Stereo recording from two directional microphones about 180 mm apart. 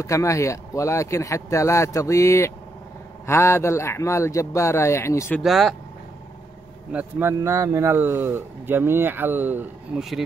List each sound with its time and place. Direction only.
0.0 s speech: 15° left (ahead or behind)
5.4 s speech: centre (ahead or behind)
6.9 s speech: 10° right (ahead or behind)